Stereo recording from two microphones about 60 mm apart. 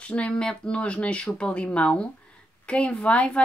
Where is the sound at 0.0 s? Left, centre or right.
Left.